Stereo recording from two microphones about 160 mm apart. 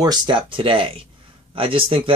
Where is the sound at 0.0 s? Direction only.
30° right (ahead or behind).